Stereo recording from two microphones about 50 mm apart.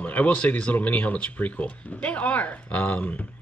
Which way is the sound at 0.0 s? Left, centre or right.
Left.